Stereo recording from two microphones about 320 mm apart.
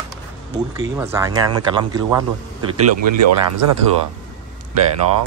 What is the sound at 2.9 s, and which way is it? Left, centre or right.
Speech, right.